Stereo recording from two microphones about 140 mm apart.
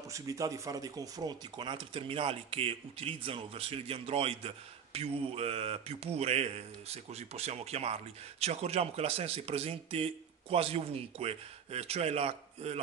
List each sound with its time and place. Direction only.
0.1 s speech: 25° right (ahead or behind); by 12.8 s 45° right (ahead or behind)